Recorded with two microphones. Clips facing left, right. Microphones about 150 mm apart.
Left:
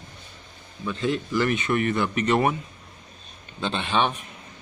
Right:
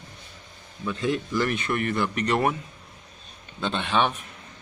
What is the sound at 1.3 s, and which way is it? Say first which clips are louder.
Speech: left 2 dB; 5° left (ahead or behind).